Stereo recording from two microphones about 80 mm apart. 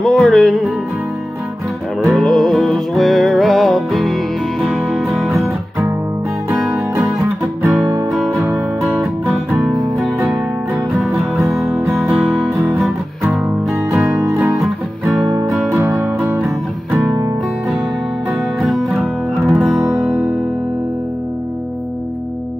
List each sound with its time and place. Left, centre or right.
0.0 s music: centre
2.0 s music: centre
8.1 s music: centre
11.1 s music: centre
13.8 s music: right
14.1 s music: right
15.8 s music: right
18.6 s music: centre